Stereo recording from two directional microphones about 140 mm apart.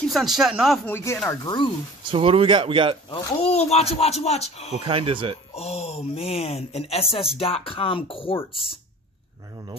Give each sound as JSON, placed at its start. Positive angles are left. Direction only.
{"t": 0.0, "sound": "a man's voice", "side_deg": 0}
{"t": 0.8, "sound": "speech", "side_deg": 15}
{"t": 1.4, "sound": "speech", "side_deg": 35}
{"t": 2.0, "sound": "speech", "side_deg": -40}
{"t": 3.1, "sound": "speech", "side_deg": 45}
{"t": 4.8, "sound": "speech", "side_deg": -40}
{"t": 5.5, "sound": "speech", "side_deg": 45}